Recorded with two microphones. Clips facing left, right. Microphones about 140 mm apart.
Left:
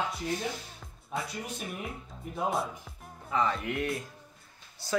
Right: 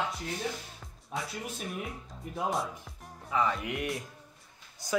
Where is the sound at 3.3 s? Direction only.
5° right (ahead or behind).